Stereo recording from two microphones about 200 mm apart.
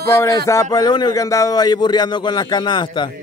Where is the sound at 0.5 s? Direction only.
15° left (ahead or behind).